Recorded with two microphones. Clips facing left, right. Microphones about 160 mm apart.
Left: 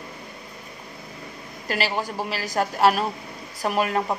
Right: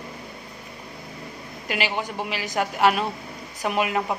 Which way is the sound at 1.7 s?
35° left (ahead or behind).